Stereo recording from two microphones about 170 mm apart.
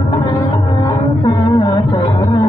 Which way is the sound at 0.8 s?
25° left (ahead or behind).